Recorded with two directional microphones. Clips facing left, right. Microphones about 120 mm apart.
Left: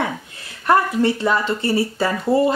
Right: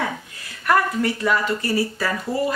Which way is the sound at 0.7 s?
25° left (ahead or behind).